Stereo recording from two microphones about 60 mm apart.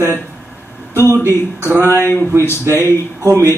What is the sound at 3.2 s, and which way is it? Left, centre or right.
Speech, right.